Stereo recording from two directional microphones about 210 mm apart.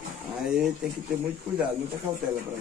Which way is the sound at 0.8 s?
5° right (ahead or behind).